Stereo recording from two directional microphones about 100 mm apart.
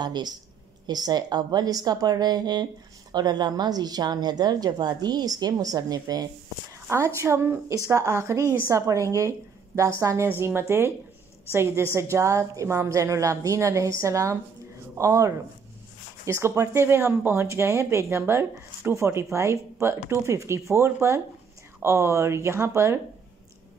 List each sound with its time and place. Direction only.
0.0 s a woman's voice: 45° right (ahead or behind)
7.2 s a woman's voice: 25° right (ahead or behind)